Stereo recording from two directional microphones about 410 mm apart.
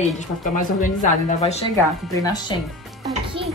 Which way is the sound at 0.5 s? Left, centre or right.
Centre.